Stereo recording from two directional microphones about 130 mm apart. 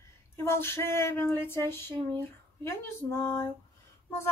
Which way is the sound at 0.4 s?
20° left (ahead or behind).